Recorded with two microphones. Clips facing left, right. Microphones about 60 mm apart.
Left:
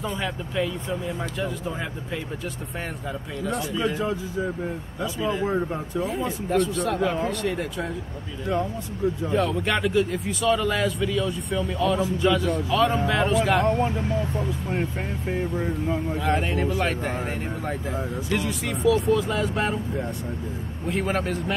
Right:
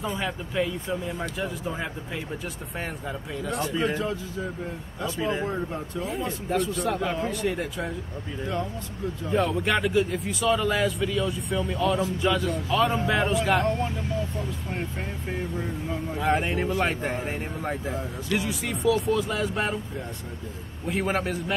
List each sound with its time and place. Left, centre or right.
0.0 s speech: centre
3.4 s speech: centre
5.5 s speech: centre
6.5 s speech: centre
9.3 s speech: centre
13.7 s speech: left
16.2 s speech: centre
20.8 s speech: centre